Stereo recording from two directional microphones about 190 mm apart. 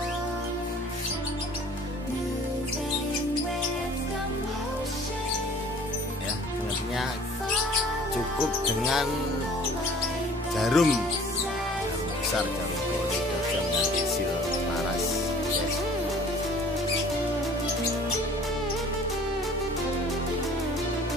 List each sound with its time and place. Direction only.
8.8 s speech: centre (ahead or behind)
10.6 s speech: centre (ahead or behind)